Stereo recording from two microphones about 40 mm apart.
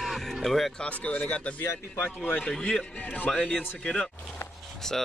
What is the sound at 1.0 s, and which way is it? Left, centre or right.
Speech, left.